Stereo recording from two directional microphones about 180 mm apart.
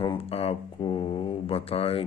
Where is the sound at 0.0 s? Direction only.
30° left (ahead or behind).